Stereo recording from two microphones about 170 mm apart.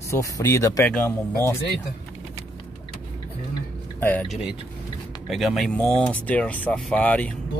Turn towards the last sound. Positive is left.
turn(degrees=10)  # may be behind; listen again after turning